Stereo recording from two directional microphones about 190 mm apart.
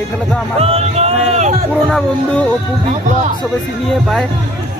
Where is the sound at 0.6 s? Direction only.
30° right (ahead or behind).